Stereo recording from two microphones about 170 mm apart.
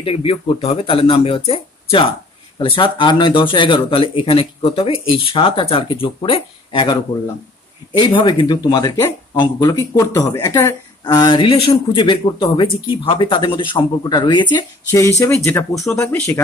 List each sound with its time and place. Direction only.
0.0 s speech: 35° left (ahead or behind)
8.0 s speech: 30° left (ahead or behind)